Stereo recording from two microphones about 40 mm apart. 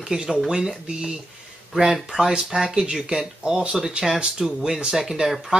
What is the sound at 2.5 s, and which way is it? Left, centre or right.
Speech, right.